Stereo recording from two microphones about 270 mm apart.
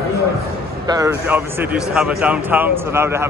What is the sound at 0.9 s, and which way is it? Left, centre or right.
Speech, centre.